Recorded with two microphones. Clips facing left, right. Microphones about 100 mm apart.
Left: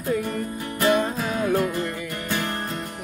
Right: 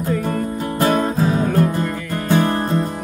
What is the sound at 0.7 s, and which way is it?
Music, 35° right (ahead or behind).